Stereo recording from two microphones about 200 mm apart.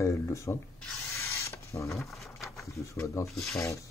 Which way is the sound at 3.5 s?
15° left (ahead or behind).